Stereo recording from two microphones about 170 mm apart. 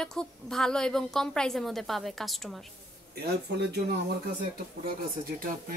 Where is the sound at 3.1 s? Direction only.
70° right (ahead or behind).